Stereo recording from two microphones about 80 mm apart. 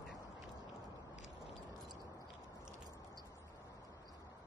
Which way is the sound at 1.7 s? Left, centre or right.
Right.